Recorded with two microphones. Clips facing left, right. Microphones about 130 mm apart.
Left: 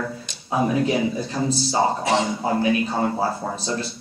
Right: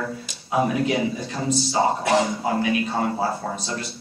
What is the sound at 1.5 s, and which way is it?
A woman's voice, 30° left (ahead or behind).